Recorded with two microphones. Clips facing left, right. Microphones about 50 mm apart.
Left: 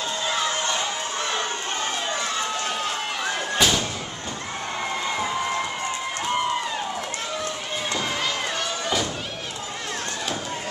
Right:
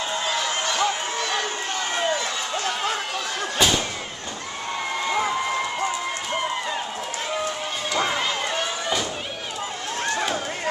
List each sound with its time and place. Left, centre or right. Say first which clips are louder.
0.7 s a sound: right 3 dB; left
3.5 s thump: right 1 dB; centre
8.1 s slam: right 2 dB; centre